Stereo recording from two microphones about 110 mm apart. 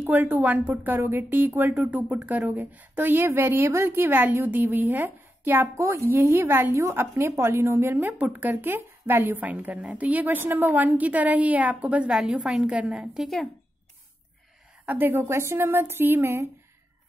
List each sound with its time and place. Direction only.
0.0 s speech: 15° right (ahead or behind); by 13.5 s centre (ahead or behind)
14.9 s speech: 20° right (ahead or behind)